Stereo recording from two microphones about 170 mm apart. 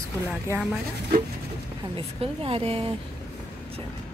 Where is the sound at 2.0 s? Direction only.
35° right (ahead or behind).